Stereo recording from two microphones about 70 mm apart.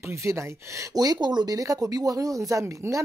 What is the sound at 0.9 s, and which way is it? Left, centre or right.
Speech, right.